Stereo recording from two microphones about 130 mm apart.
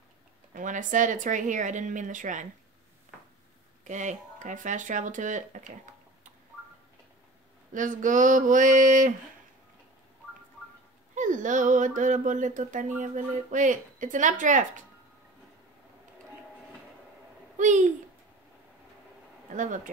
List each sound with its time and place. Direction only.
0.5 s a woman's voice: 85° right
3.8 s a woman's voice: 70° right (ahead or behind)
7.7 s a sound: 90° right
11.1 s a woman's voice: 80° right
17.6 s speech: 70° right (ahead or behind)
19.5 s a woman's voice: 75° right (ahead or behind)